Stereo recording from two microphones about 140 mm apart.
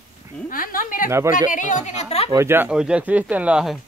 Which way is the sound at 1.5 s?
65° left (ahead or behind).